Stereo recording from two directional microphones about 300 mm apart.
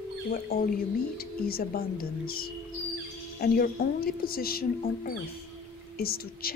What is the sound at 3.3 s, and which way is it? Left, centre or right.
Speech, left.